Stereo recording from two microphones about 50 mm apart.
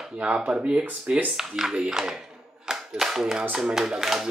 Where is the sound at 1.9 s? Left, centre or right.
Centre.